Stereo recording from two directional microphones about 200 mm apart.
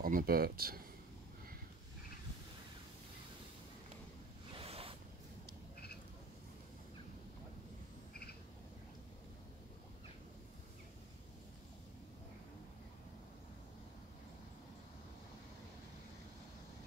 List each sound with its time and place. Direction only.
0.0 s speech: 45° right (ahead or behind)
4.6 s zipper: 30° right (ahead or behind)